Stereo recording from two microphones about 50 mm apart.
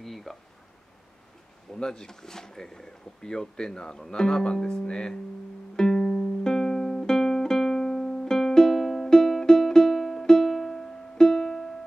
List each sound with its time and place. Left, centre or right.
0.0 s a sound: centre
1.8 s speech: centre
5.8 s music: centre